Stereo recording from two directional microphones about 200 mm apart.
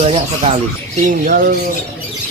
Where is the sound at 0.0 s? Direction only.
30° right (ahead or behind).